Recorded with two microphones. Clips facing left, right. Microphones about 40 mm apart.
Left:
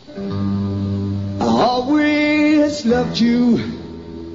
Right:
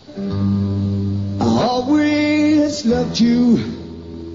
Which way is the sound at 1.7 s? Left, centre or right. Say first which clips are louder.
Even; centre.